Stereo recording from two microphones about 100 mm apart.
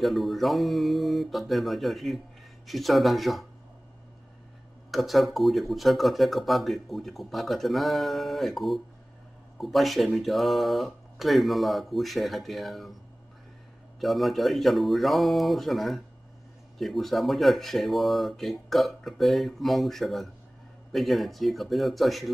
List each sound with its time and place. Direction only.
0.0 s speech: centre (ahead or behind)
4.9 s speech: centre (ahead or behind)
13.9 s speech: centre (ahead or behind)